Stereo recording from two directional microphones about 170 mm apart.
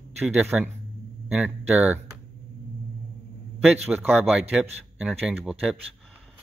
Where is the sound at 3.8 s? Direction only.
10° right (ahead or behind).